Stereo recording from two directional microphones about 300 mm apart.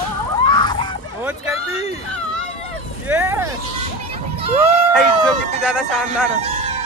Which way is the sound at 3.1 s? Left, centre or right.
Centre.